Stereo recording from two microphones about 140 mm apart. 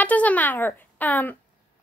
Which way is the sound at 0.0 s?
10° left (ahead or behind).